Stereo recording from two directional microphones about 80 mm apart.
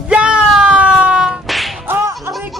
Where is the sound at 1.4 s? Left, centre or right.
Centre.